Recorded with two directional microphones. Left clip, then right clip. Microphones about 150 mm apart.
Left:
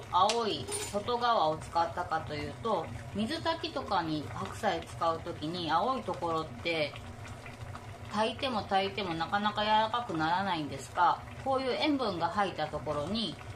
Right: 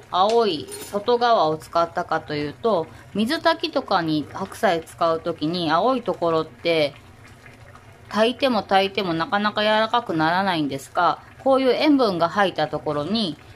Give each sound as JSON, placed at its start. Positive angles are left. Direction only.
{"t": 0.1, "sound": "speech", "side_deg": -90}
{"t": 8.1, "sound": "speech", "side_deg": -80}